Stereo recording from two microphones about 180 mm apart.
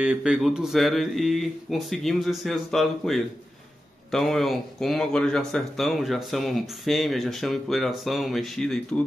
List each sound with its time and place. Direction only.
0.0 s speech: 5° right (ahead or behind)